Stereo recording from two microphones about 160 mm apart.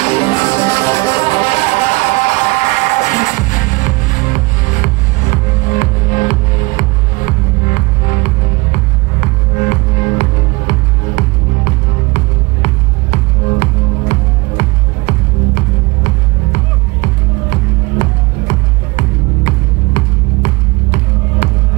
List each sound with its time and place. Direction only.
0.0 s music: 40° left (ahead or behind)
0.4 s music: 15° left (ahead or behind); by 17.6 s 50° left (ahead or behind)
18.9 s music: 45° left (ahead or behind)